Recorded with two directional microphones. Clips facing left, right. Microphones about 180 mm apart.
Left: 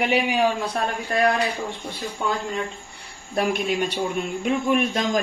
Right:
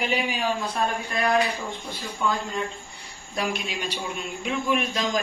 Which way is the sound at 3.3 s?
55° left (ahead or behind).